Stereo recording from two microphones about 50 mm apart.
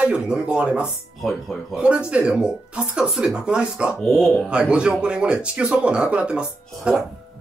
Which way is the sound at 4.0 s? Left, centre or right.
Centre.